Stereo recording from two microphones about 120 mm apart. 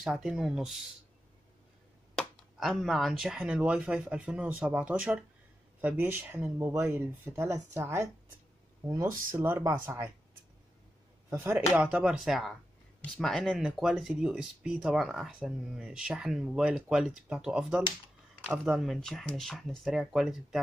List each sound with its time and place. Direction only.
0.0 s speech: 5° right (ahead or behind)
2.1 s speech: centre (ahead or behind); by 10.1 s 20° right (ahead or behind)
11.2 s speech: 20° right (ahead or behind)
11.7 s speech: 10° right (ahead or behind)